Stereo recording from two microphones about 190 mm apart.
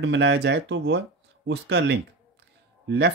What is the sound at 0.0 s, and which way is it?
Speech, 65° right (ahead or behind).